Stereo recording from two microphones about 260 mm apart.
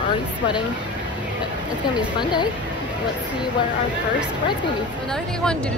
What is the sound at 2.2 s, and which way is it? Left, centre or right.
Speech, centre.